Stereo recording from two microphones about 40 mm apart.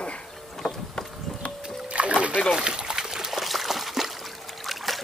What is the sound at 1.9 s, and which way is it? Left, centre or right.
Splash, right.